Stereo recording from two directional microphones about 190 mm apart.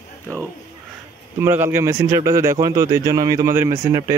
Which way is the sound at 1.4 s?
10° right (ahead or behind).